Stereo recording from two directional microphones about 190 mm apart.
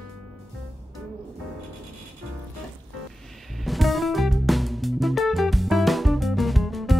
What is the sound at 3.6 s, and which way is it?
Music, centre (ahead or behind).